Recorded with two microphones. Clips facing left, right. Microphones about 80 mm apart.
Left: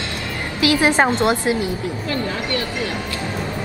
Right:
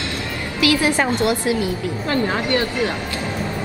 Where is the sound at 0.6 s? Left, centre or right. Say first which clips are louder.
Left 2 dB; left.